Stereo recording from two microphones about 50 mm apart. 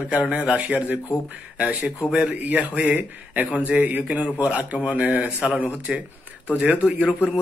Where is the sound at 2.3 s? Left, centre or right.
Right.